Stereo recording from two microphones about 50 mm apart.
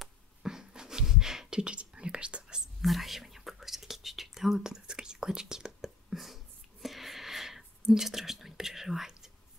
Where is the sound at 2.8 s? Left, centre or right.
Centre.